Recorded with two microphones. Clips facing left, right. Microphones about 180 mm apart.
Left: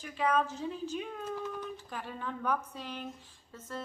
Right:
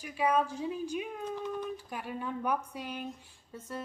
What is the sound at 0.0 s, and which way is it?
A woman's voice, 10° right (ahead or behind).